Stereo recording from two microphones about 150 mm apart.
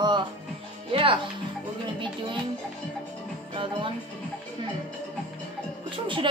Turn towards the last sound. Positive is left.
turn(degrees=-35)  # may be behind; listen again after turning